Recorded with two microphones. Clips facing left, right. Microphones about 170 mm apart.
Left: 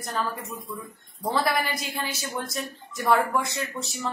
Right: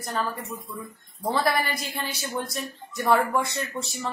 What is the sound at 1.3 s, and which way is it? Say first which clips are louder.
A woman's voice: even; centre (ahead or behind).